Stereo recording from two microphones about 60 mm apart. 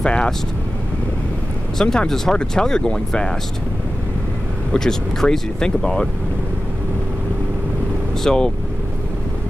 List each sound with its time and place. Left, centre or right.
0.0 s speech: centre
1.8 s speech: centre
4.7 s speech: centre
8.2 s speech: centre